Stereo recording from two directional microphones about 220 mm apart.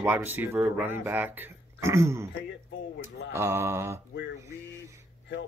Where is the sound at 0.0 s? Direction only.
10° right (ahead or behind).